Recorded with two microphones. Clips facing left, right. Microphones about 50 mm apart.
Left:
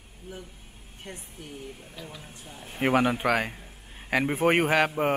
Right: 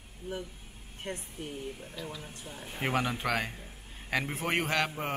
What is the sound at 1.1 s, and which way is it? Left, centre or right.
Speech, right.